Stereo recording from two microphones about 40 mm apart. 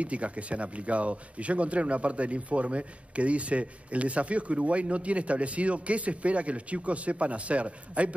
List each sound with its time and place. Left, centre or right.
0.0 s speech: right